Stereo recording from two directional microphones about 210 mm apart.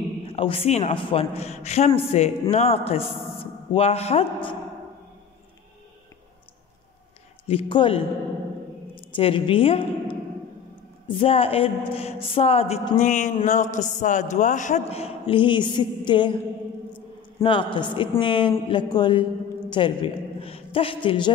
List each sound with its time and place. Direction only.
0.2 s a man's voice: 25° left (ahead or behind)
7.4 s speech: 25° left (ahead or behind)
9.0 s a woman's voice: 25° left (ahead or behind)
17.4 s a man's voice: 25° left (ahead or behind)